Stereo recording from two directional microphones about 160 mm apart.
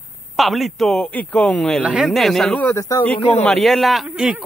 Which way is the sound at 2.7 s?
15° left (ahead or behind).